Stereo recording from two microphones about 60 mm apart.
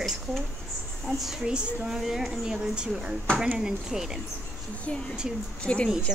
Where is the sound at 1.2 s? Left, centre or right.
Centre.